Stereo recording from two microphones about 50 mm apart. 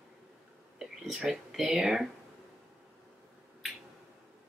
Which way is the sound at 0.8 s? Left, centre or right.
Centre.